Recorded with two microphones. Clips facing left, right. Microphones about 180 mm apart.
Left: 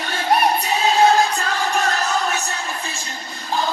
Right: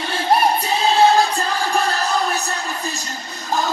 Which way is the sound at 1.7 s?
35° right (ahead or behind).